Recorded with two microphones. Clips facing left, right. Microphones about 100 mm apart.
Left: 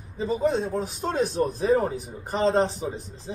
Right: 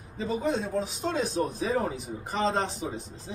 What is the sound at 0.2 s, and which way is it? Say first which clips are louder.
Speech: left 4 dB; 35° left (ahead or behind).